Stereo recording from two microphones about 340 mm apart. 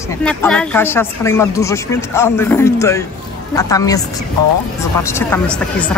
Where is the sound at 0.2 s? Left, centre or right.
Centre.